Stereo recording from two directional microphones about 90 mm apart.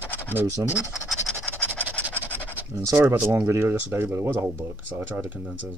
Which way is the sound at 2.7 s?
35° right (ahead or behind).